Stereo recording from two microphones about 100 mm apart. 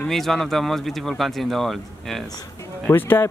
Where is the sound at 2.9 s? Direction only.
20° left (ahead or behind).